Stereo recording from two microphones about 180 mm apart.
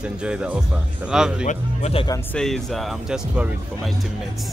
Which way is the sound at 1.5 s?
40° left (ahead or behind).